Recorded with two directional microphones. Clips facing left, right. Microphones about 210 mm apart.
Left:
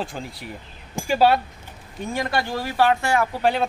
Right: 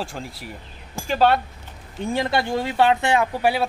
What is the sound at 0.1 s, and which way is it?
Speech, centre (ahead or behind).